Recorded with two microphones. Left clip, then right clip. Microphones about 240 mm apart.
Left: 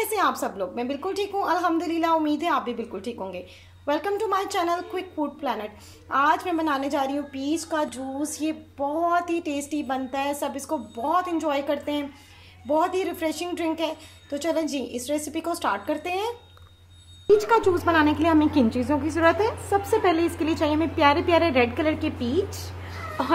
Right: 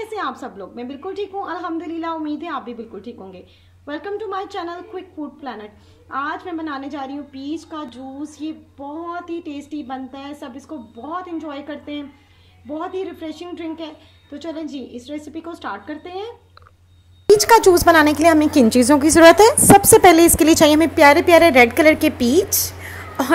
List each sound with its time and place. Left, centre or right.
0.1 s a woman's voice: centre
17.3 s a woman's voice: right